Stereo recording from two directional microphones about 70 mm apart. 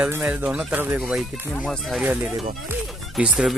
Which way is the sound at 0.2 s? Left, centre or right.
Centre.